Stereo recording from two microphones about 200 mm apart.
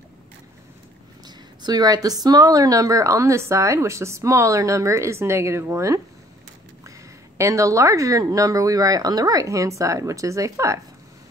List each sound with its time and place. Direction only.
1.2 s speech: 20° right (ahead or behind)
7.3 s speech: 15° right (ahead or behind)